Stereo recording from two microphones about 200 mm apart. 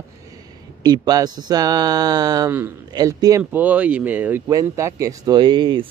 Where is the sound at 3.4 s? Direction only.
10° right (ahead or behind).